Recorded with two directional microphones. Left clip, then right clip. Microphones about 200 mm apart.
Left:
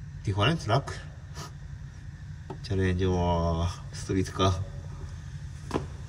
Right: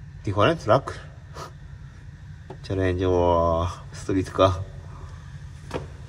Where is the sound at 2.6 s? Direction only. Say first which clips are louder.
Right 6 dB; 20° right (ahead or behind).